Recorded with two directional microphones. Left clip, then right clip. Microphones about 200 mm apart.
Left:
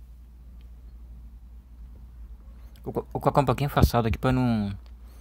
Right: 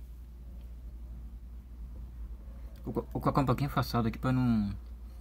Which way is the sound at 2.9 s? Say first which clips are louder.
Left 6 dB; 45° left (ahead or behind).